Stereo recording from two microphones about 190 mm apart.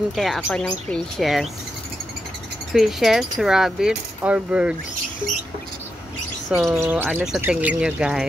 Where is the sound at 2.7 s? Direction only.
Centre (ahead or behind).